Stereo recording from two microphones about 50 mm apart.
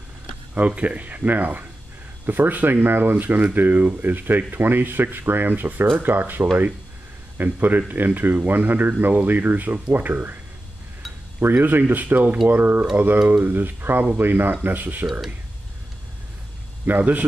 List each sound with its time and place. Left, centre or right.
0.6 s speech: right
11.4 s a man's voice: right
15.0 s speech: centre
16.8 s speech: right